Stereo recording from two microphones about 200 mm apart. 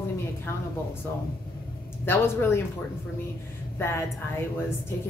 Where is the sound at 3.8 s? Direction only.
10° left (ahead or behind).